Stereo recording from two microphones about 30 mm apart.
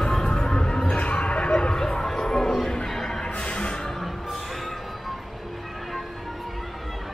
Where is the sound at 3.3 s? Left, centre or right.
Left.